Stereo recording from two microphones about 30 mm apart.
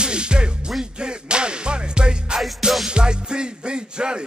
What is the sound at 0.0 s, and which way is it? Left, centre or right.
Music, right.